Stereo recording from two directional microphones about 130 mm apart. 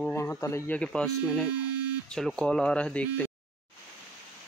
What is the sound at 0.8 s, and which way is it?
Speech, 5° left (ahead or behind).